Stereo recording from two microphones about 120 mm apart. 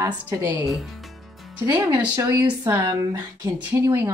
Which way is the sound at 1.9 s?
15° right (ahead or behind).